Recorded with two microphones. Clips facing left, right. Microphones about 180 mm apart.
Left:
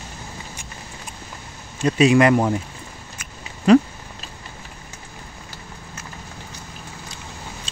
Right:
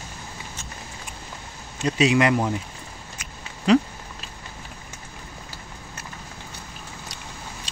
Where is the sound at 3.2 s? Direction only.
50° left (ahead or behind).